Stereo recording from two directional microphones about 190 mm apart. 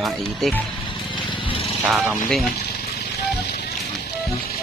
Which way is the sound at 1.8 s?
5° right (ahead or behind).